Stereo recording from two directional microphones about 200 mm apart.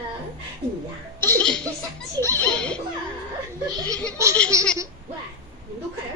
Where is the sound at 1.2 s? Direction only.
10° left (ahead or behind).